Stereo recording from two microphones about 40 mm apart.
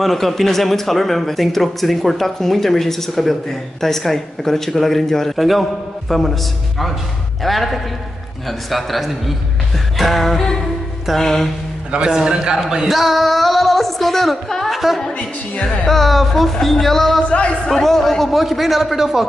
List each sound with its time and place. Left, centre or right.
0.0 s a man's voice: centre
7.4 s a man's voice: centre
11.9 s a man's voice: centre
12.8 s speech: centre
15.6 s speech: left
15.9 s a man's voice: centre
17.3 s speech: left
17.6 s a man's voice: centre